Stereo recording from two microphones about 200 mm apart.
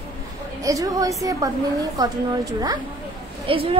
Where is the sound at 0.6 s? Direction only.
15° right (ahead or behind).